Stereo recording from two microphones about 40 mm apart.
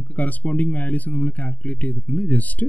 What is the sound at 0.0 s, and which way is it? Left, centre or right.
Speech, left.